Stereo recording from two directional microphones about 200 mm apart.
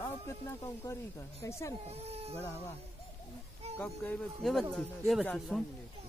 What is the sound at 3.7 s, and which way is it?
Speech, 10° left (ahead or behind).